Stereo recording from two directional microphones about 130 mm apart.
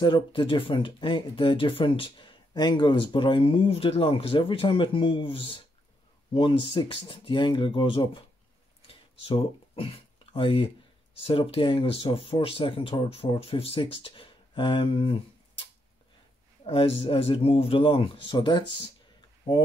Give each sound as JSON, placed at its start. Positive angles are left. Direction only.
{"t": 0.0, "sound": "speech", "side_deg": 40}
{"t": 8.8, "sound": "a sound", "side_deg": 45}
{"t": 11.2, "sound": "speech", "side_deg": 45}